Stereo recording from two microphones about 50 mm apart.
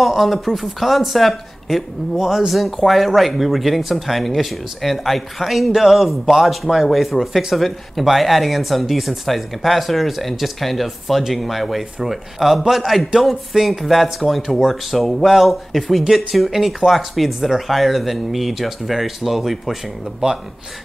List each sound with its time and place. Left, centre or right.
0.0 s speech: centre
20.2 s speech: centre